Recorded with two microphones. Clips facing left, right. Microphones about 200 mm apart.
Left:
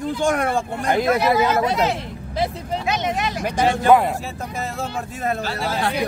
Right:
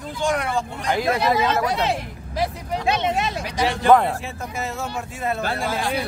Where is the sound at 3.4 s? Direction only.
50° left (ahead or behind).